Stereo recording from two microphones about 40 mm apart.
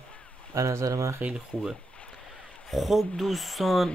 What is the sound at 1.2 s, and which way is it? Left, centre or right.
Speech, right.